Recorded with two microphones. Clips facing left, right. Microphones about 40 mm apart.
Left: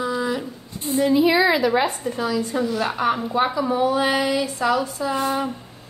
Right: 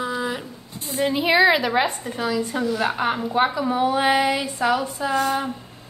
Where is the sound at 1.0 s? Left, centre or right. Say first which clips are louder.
Left 1 dB; right.